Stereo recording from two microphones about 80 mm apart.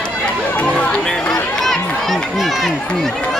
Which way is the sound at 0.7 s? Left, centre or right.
Centre.